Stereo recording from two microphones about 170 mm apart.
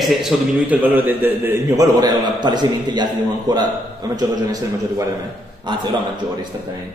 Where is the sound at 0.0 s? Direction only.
Centre (ahead or behind); by 6.7 s 25° right (ahead or behind).